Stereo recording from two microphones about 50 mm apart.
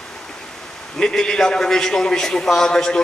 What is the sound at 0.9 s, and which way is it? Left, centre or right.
A man's voice, centre.